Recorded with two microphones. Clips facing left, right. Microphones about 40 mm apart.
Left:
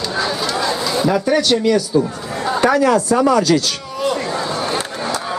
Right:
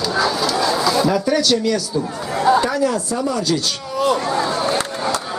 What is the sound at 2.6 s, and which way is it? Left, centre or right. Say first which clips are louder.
Speech: left 4 dB; left.